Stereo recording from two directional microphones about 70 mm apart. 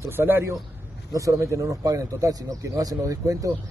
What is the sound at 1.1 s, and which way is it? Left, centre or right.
Speech, right.